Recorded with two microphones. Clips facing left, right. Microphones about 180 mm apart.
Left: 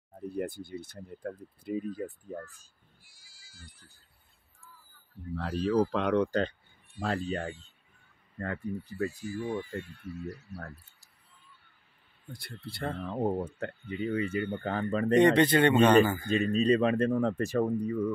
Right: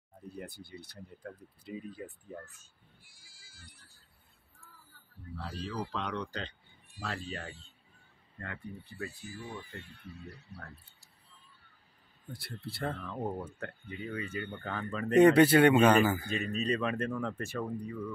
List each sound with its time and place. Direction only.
0.4 s speech: 50° left (ahead or behind); by 2.7 s 35° left (ahead or behind)
3.0 s sheep: 55° right (ahead or behind)
5.3 s speech: 60° left (ahead or behind); by 9.6 s 45° left (ahead or behind)
10.1 s speech: 30° right (ahead or behind)
12.3 s speech: 5° right (ahead or behind)
13.0 s speech: 25° left (ahead or behind)
15.1 s speech: 10° right (ahead or behind)
16.5 s speech: 30° left (ahead or behind)